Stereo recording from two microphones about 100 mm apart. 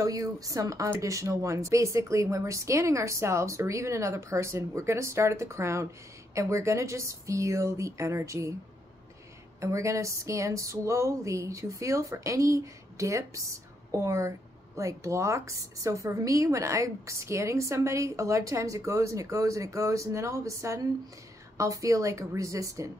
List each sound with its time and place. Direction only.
0.0 s speech: 35° right (ahead or behind)
9.6 s speech: 30° right (ahead or behind)